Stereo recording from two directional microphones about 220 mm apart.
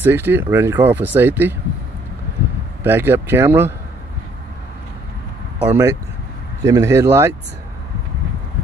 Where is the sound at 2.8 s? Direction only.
10° right (ahead or behind).